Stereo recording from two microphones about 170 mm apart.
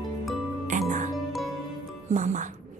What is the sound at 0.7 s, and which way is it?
Music, 50° right (ahead or behind).